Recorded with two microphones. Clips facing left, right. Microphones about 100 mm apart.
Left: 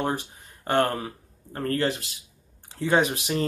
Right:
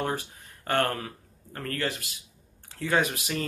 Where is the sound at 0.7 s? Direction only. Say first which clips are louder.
Left 3 dB; 20° left (ahead or behind).